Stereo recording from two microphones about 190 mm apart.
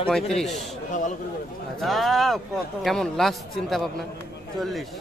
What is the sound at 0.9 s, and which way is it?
Speech, 40° left (ahead or behind).